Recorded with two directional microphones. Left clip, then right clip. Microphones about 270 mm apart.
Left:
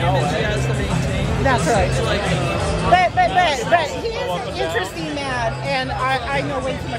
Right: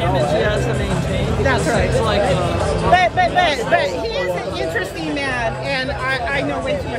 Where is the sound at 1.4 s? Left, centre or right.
Centre.